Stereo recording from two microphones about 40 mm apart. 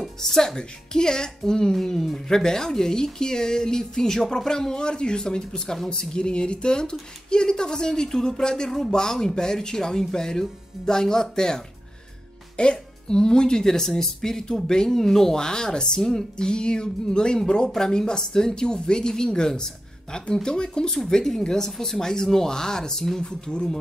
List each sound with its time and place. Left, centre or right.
0.0 s speech: centre
0.6 s speech: centre
21.0 s speech: centre